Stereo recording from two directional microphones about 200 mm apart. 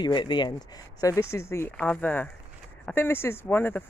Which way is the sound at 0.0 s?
25° left (ahead or behind).